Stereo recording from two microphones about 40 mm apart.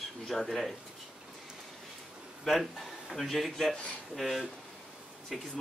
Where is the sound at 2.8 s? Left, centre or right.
Centre.